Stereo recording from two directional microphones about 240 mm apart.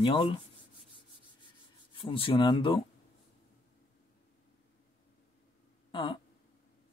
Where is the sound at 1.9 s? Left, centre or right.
Left.